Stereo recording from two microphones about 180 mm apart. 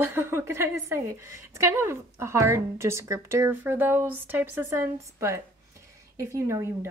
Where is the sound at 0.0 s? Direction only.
10° right (ahead or behind).